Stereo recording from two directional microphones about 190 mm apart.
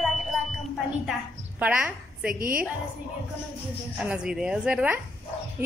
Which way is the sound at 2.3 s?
50° right (ahead or behind).